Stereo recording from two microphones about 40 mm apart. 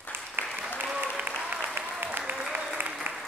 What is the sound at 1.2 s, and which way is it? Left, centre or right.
Applause, right.